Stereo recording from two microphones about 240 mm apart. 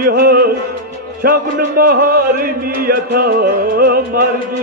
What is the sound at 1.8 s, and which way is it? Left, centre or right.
Music, right.